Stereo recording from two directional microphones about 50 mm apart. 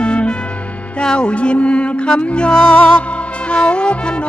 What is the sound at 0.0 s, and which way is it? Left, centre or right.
Music, left.